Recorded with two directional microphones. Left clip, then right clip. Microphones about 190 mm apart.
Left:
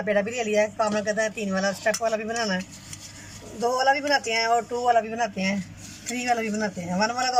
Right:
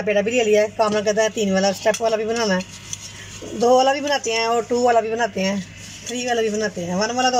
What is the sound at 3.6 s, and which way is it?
A man's voice, 15° right (ahead or behind).